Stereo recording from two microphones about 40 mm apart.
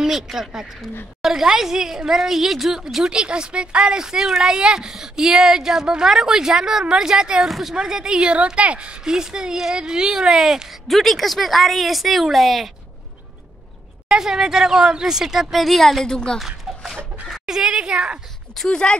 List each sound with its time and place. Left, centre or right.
0.0 s speech: centre
3.1 s speech: right
7.4 s speech: centre
7.7 s speech: centre
10.9 s speech: centre
14.0 s speech: centre
15.6 s speech: centre
16.3 s dog: centre
17.3 s speech: centre
18.7 s speech: left